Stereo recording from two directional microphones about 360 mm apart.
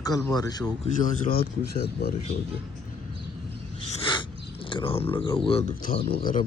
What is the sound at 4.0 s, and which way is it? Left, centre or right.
Speech, centre.